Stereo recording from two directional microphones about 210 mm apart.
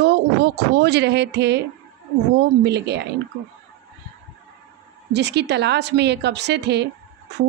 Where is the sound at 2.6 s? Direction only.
55° right (ahead or behind).